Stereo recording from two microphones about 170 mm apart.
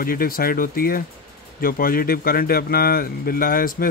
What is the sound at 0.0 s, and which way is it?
Speech, 60° left (ahead or behind).